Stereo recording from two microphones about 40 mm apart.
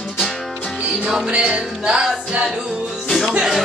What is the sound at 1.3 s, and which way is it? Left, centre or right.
Music, right.